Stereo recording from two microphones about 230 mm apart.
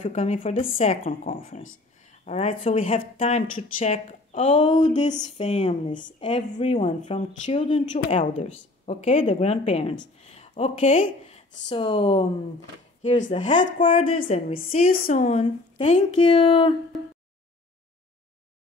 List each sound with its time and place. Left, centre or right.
0.0 s a woman's voice: left
13.3 s speech: left
14.5 s a woman's voice: left